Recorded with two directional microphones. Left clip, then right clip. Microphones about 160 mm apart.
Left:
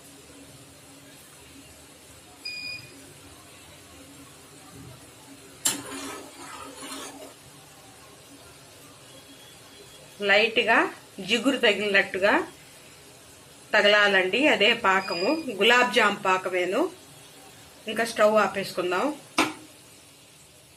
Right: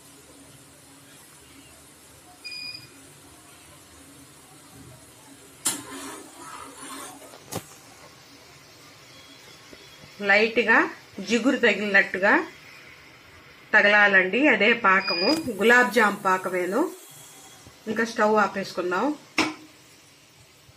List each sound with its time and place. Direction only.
10.2 s speech: 35° right (ahead or behind)
13.7 s speech: 30° right (ahead or behind)
17.9 s speech: 45° right (ahead or behind)